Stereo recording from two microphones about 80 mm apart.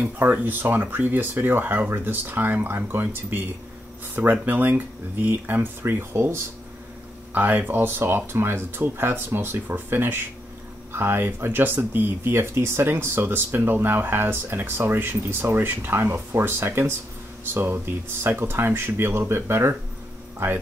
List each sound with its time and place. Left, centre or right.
0.0 s speech: right